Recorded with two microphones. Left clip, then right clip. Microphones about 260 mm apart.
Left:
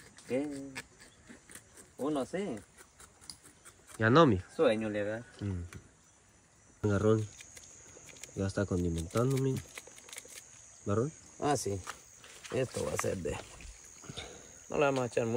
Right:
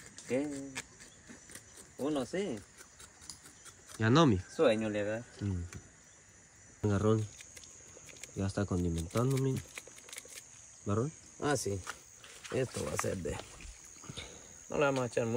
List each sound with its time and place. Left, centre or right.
0.3 s speech: centre
2.0 s speech: centre
3.9 s speech: centre
6.8 s a sound: centre